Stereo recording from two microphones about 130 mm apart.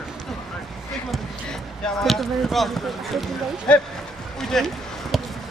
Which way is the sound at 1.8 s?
Centre (ahead or behind).